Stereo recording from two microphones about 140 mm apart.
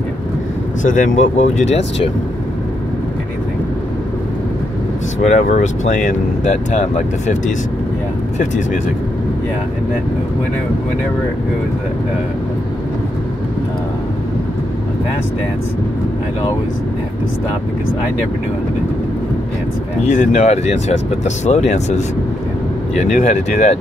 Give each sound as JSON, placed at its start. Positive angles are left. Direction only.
{"t": 0.8, "sound": "speech", "side_deg": 65}
{"t": 5.2, "sound": "speech", "side_deg": 55}
{"t": 20.0, "sound": "speech", "side_deg": 60}
{"t": 23.1, "sound": "speech", "side_deg": 60}